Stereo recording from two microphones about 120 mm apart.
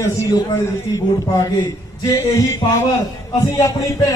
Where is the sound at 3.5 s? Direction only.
25° left (ahead or behind).